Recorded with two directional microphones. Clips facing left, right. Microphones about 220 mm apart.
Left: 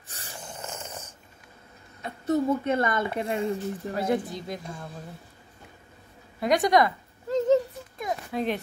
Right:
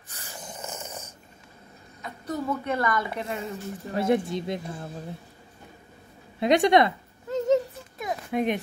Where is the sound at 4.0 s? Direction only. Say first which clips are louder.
Right 4 dB; 25° right (ahead or behind).